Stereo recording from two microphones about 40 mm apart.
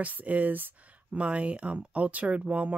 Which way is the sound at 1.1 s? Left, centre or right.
Right.